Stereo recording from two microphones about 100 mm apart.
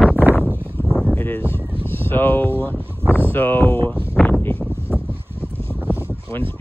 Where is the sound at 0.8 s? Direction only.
20° left (ahead or behind).